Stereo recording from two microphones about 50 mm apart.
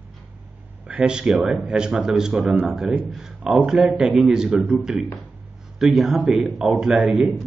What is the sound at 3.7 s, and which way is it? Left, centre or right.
Speech, centre.